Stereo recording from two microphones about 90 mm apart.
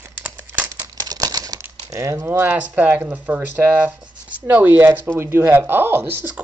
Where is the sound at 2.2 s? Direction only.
20° right (ahead or behind).